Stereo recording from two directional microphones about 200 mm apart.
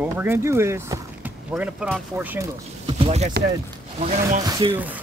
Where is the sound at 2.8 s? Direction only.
30° right (ahead or behind).